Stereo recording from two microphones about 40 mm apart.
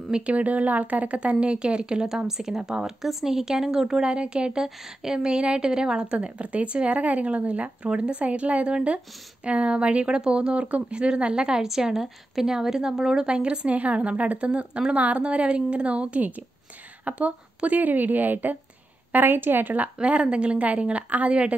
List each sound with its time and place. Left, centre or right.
0.1 s a woman's voice: right
2.1 s a woman's voice: centre; by 18.6 s right
19.1 s a woman's voice: right
20.0 s a woman's voice: right